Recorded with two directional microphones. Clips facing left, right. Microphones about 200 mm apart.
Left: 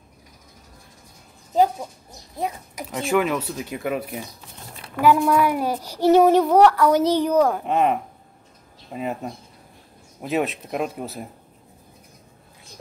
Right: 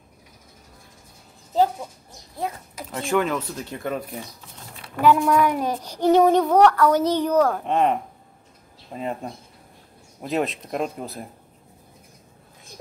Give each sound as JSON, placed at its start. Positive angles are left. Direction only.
{"t": 1.5, "sound": "speech", "side_deg": 15}
{"t": 2.3, "sound": "child singing", "side_deg": 15}
{"t": 8.9, "sound": "speech", "side_deg": 5}